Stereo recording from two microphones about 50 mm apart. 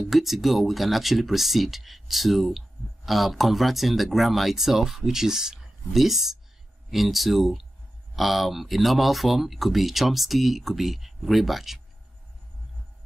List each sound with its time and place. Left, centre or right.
0.1 s speech: centre